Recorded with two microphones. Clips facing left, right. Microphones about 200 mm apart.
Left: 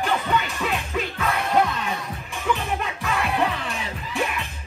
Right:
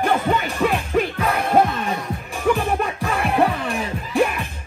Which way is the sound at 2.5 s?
50° right (ahead or behind).